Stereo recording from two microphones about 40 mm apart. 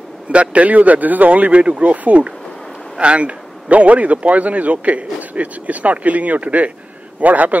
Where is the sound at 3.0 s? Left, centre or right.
Right.